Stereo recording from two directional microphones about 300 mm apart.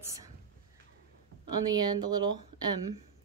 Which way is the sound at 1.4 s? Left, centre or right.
Centre.